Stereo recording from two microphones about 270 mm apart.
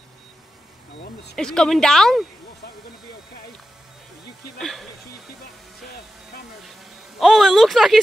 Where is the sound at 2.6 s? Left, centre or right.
Left.